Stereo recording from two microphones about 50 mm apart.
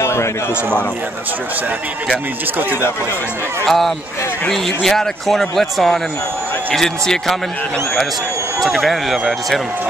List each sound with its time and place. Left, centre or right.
0.0 s run: left
3.6 s speech: centre
8.5 s speech: centre